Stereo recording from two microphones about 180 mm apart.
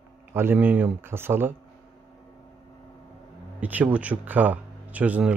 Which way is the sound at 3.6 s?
10° right (ahead or behind).